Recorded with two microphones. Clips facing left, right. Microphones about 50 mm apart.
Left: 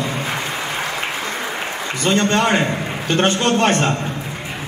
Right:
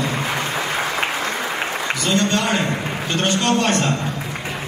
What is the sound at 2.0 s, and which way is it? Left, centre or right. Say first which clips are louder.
A man's voice: left 4 dB; left.